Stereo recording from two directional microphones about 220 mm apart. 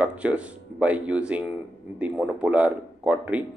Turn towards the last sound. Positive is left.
turn(degrees=-5)  # may be behind; listen again after turning